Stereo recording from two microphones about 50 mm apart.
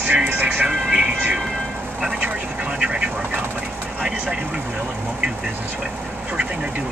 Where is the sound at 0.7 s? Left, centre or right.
Centre.